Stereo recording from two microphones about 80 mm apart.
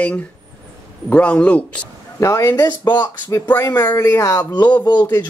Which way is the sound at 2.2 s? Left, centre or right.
Left.